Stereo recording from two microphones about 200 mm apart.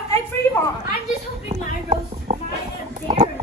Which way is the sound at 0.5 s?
10° left (ahead or behind).